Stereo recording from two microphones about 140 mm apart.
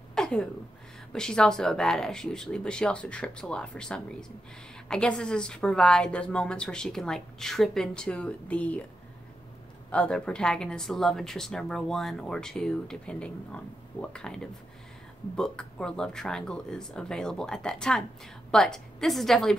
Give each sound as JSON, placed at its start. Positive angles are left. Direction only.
{"t": 0.1, "sound": "a sound", "side_deg": 5}
{"t": 1.1, "sound": "a woman's voice", "side_deg": 5}
{"t": 9.8, "sound": "a woman's voice", "side_deg": 5}